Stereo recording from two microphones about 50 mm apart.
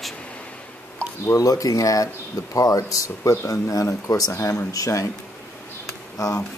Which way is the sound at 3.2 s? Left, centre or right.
Left.